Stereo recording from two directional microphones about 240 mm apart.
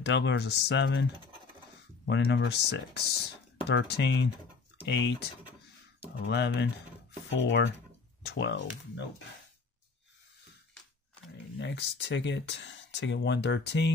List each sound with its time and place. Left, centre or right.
0.0 s speech: left
2.0 s speech: left
11.5 s speech: left